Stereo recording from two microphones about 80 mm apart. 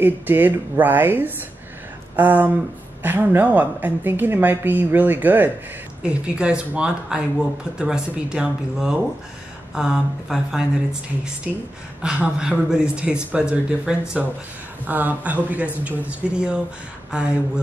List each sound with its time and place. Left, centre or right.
0.0 s a woman's voice: right
6.0 s speech: centre
12.0 s speech: centre
14.9 s a woman's voice: right